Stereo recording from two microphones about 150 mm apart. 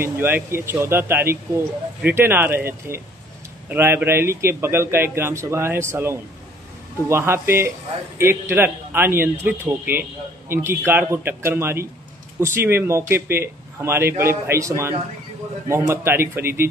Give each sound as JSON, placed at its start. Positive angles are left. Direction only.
{"t": 0.0, "sound": "speech", "side_deg": -15}